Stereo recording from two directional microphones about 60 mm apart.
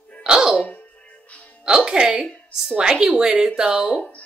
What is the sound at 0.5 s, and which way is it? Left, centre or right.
Music, centre.